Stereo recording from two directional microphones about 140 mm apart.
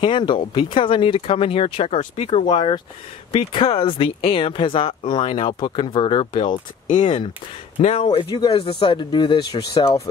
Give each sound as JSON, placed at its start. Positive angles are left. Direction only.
{"t": 0.0, "sound": "speech", "side_deg": 35}
{"t": 2.4, "sound": "speech", "side_deg": 35}
{"t": 7.8, "sound": "speech", "side_deg": 45}